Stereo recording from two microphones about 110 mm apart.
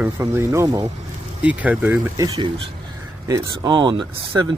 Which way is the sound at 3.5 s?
45° right (ahead or behind).